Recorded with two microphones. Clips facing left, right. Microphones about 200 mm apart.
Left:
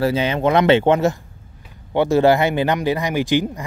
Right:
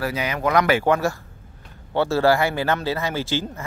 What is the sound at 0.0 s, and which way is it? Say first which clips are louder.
Speech: left 6 dB; 30° left (ahead or behind).